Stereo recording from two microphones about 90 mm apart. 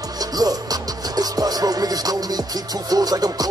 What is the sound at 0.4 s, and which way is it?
Music, 45° right (ahead or behind).